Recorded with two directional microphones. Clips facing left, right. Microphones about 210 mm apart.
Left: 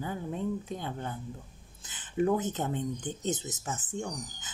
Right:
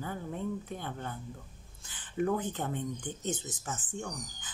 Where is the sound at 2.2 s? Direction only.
20° left (ahead or behind).